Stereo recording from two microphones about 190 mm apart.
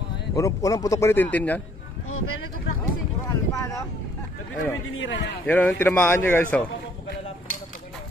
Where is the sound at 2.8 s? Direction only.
15° left (ahead or behind).